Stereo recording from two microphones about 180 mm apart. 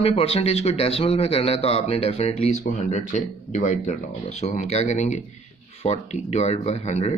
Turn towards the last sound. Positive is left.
turn(degrees=35)  # may be behind; listen again after turning